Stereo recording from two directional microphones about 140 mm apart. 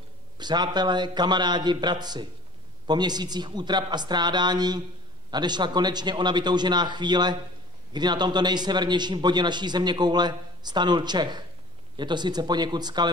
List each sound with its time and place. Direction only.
0.4 s a man's voice: 30° right (ahead or behind)